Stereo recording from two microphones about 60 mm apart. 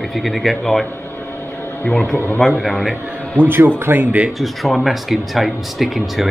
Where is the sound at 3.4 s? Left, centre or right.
Right.